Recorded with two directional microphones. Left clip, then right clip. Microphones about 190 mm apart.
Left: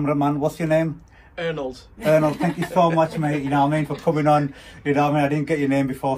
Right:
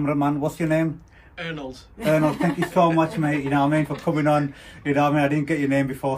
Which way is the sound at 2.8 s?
5° left (ahead or behind).